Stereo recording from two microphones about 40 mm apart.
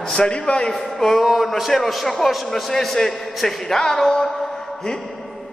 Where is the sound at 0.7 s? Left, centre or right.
Centre.